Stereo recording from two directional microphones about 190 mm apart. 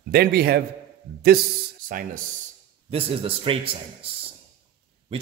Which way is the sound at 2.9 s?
30° right (ahead or behind).